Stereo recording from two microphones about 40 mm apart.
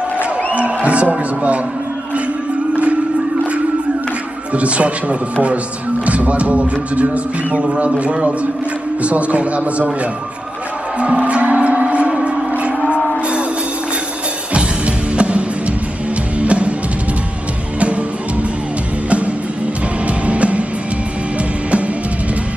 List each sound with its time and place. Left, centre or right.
0.6 s music: right
1.1 s speech: right
2.7 s music: right
4.6 s speech: right
11.1 s music: right
14.5 s music: right
20.1 s music: right
21.6 s music: right